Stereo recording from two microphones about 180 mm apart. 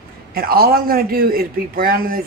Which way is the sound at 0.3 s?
55° right (ahead or behind).